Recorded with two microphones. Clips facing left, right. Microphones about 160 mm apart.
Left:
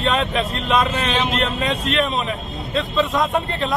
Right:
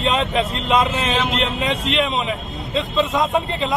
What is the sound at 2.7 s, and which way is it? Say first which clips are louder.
Speech: even; centre (ahead or behind).